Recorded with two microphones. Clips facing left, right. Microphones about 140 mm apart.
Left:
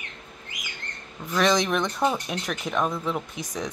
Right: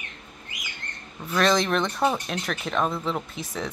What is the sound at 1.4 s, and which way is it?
Speech, 15° left (ahead or behind).